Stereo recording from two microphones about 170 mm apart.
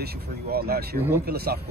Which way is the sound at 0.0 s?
65° right (ahead or behind).